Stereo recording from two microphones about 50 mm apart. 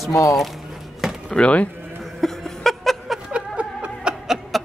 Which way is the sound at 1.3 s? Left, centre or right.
Left.